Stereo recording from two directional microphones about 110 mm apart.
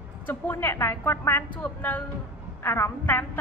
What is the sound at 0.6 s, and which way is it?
A woman's voice, 20° left (ahead or behind).